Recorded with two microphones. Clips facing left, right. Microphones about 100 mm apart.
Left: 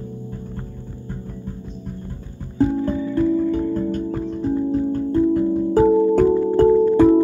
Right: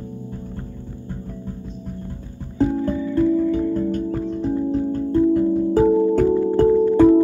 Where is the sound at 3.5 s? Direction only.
10° left (ahead or behind).